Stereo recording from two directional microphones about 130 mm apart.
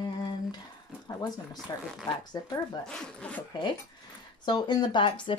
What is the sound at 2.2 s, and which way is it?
Speech, 30° left (ahead or behind).